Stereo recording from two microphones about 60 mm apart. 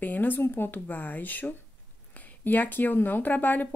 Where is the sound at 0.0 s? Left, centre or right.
Left.